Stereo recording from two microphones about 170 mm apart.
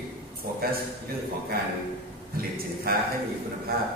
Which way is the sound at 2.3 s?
60° right (ahead or behind).